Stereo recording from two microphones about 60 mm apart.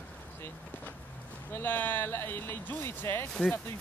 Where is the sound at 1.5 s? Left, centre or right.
Left.